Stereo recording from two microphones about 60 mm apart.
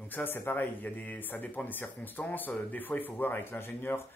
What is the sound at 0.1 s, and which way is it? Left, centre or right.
Speech, left.